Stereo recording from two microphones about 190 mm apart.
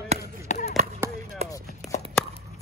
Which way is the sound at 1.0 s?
15° right (ahead or behind).